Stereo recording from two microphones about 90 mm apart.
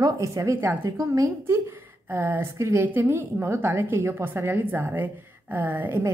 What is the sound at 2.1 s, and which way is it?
A woman's voice, 25° right (ahead or behind).